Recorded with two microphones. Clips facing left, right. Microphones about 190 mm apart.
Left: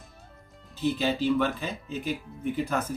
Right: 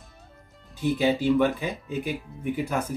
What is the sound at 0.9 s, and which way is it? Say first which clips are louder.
Speech: right 5 dB; 15° right (ahead or behind).